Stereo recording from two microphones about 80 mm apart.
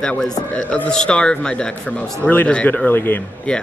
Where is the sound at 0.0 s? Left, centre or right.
Centre; by 3.2 s left.